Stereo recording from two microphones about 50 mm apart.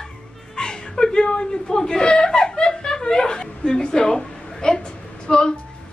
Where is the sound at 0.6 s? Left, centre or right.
Centre.